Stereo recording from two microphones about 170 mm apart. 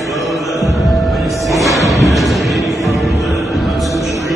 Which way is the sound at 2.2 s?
Centre (ahead or behind).